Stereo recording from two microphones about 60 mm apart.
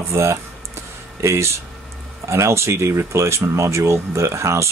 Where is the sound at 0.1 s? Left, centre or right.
Right.